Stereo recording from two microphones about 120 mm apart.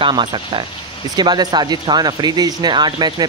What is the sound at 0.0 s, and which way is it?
Speech, 45° right (ahead or behind).